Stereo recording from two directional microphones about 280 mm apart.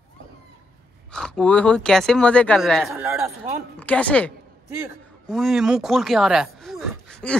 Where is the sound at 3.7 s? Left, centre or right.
Centre.